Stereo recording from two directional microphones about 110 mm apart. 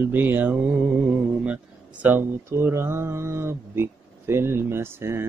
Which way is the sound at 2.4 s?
25° right (ahead or behind).